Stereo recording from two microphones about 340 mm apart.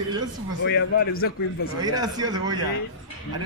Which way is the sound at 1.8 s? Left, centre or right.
Centre.